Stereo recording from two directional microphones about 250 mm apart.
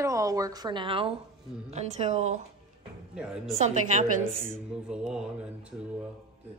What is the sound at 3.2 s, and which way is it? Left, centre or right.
Speech, centre.